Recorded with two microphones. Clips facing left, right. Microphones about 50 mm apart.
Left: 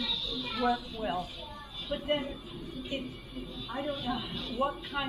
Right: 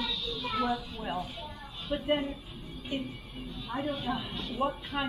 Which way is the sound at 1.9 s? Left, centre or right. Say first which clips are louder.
Right 2 dB; centre.